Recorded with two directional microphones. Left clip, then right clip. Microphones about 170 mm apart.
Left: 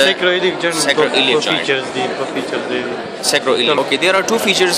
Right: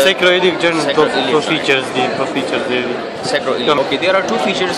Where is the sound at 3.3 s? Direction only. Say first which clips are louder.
Even; 55° left (ahead or behind).